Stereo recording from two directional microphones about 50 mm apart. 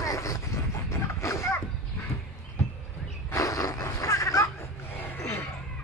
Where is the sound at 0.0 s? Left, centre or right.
Left.